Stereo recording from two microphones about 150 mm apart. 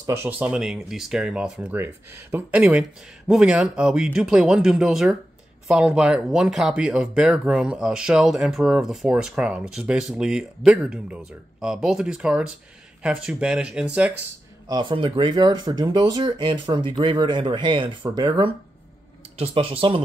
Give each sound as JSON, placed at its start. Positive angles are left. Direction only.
{"t": 0.0, "sound": "speech", "side_deg": -15}
{"t": 14.7, "sound": "speech", "side_deg": -30}